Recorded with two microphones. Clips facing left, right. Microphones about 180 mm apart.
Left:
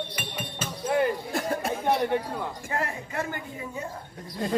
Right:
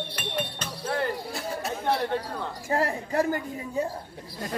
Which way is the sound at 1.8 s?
15° left (ahead or behind).